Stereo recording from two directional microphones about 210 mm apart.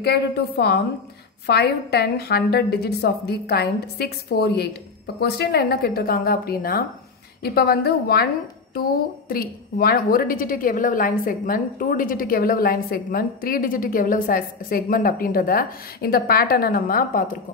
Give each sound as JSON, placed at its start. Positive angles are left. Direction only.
{"t": 0.0, "sound": "a woman's voice", "side_deg": 50}
{"t": 9.3, "sound": "a woman's voice", "side_deg": 45}